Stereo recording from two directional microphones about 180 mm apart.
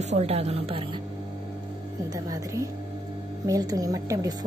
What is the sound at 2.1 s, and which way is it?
A woman's voice, 20° right (ahead or behind).